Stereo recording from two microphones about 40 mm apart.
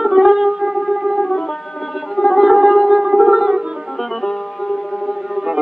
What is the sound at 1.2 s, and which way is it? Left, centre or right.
Music, centre.